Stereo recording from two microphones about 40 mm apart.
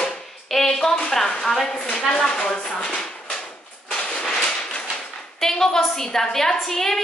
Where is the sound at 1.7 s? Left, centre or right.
Left.